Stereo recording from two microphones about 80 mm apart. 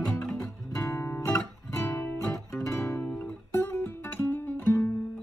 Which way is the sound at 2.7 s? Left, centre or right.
Left.